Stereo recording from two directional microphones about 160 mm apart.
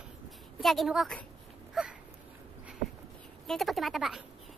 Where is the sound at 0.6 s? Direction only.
Centre (ahead or behind).